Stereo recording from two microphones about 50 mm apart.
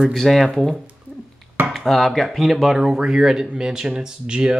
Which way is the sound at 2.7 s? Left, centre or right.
Centre.